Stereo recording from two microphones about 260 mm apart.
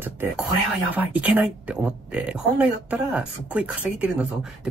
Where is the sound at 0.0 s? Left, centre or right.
Centre.